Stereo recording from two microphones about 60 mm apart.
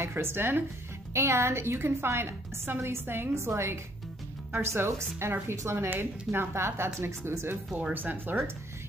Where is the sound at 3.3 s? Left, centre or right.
Right.